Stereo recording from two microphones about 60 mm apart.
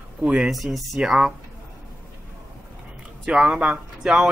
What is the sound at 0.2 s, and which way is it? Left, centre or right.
Speech, centre.